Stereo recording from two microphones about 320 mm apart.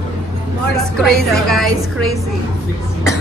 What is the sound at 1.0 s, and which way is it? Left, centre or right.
Speech, centre.